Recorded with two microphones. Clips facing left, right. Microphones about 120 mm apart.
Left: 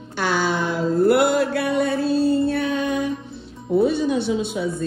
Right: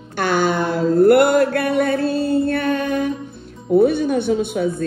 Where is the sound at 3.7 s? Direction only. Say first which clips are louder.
Right 4 dB; 55° right (ahead or behind).